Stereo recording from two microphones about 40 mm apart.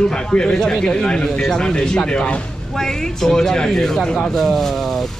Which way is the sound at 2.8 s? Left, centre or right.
Centre.